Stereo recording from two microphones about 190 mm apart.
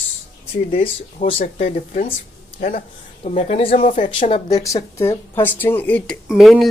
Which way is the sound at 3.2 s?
35° left (ahead or behind).